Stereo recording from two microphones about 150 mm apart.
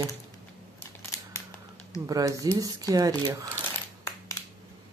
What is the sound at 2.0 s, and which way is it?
Speech, 25° right (ahead or behind).